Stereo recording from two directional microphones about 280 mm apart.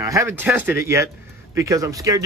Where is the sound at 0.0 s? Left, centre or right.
Centre.